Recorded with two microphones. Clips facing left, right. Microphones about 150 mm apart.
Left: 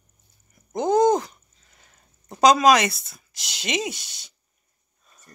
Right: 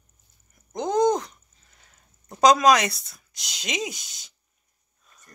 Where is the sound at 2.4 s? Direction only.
Centre (ahead or behind).